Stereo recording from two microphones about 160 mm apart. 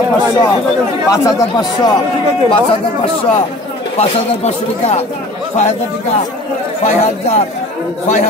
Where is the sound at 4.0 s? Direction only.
40° left (ahead or behind).